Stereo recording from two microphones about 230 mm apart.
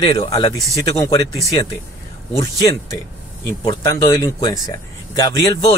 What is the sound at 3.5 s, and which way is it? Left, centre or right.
Speech, centre.